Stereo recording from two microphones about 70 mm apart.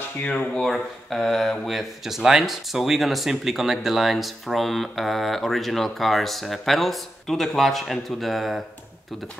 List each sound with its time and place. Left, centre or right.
0.2 s speech: left
0.6 s speech: centre